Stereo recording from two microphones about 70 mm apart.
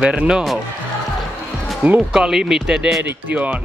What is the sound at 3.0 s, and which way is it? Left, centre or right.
Speech, right.